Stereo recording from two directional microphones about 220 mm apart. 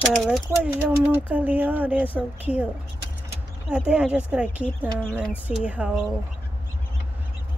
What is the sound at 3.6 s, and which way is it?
A woman's voice, 5° right (ahead or behind).